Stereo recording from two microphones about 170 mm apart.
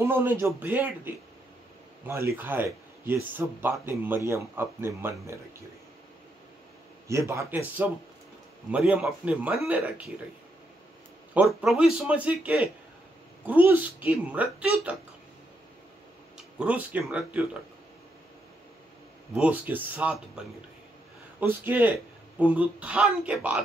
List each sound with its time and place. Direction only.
0.0 s a man's voice: 15° right (ahead or behind)
7.1 s a man's voice: 15° right (ahead or behind)
11.3 s a man's voice: centre (ahead or behind)
16.5 s a man's voice: 10° right (ahead or behind)
19.3 s a man's voice: 10° right (ahead or behind)